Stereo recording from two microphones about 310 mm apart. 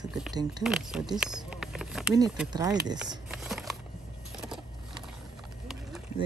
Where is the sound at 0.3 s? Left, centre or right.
Centre.